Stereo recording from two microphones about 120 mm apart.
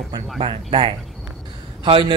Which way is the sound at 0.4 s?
50° right (ahead or behind).